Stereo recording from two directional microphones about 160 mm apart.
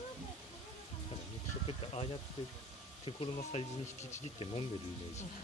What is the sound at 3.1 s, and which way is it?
Speech, 35° left (ahead or behind).